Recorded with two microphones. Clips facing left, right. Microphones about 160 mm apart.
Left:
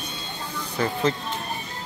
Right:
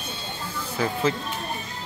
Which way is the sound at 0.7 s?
5° right (ahead or behind).